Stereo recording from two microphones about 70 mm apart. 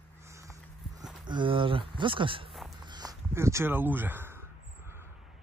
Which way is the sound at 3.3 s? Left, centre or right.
Right.